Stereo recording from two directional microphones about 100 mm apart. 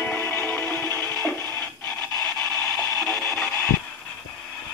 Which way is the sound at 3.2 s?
15° left (ahead or behind).